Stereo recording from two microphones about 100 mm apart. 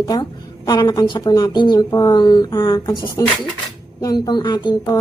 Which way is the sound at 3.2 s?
35° left (ahead or behind).